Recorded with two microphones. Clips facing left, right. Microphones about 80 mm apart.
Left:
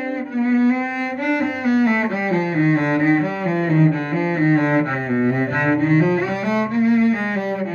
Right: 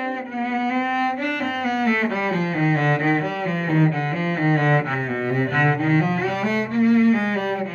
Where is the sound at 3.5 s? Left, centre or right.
Left.